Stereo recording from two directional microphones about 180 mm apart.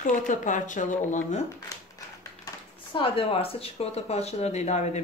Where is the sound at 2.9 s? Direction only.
30° left (ahead or behind).